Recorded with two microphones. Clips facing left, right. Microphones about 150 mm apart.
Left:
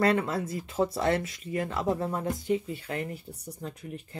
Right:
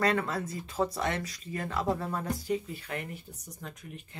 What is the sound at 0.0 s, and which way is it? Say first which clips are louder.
A woman's voice: left 3 dB; 25° left (ahead or behind).